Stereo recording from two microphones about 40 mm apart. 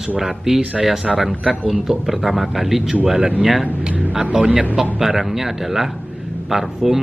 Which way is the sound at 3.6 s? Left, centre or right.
Right.